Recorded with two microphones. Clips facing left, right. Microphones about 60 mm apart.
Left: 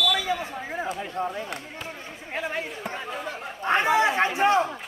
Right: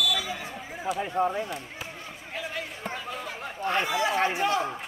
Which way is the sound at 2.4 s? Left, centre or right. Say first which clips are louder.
Left 5 dB; left.